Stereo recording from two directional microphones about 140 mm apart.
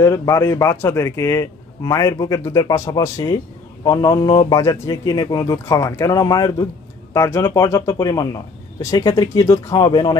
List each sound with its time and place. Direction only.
0.0 s speech: 20° left (ahead or behind)
7.2 s speech: 20° left (ahead or behind)